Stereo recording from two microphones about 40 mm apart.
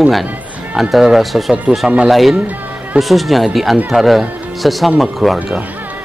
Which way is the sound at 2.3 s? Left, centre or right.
Right.